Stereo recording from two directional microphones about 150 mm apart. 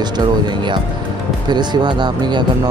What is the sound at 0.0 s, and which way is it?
Speech, 30° right (ahead or behind).